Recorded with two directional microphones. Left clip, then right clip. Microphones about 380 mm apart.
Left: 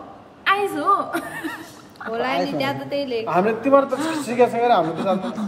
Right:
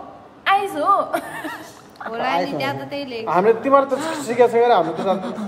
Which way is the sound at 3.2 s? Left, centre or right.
Right.